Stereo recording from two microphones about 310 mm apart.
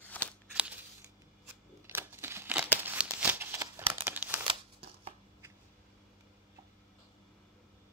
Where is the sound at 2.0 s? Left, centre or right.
Centre.